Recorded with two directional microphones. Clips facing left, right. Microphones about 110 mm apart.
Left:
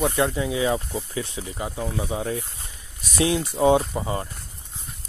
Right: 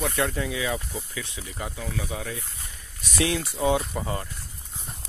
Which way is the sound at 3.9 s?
20° left (ahead or behind).